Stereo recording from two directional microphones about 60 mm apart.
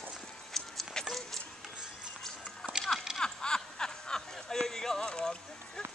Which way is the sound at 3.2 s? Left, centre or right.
Centre.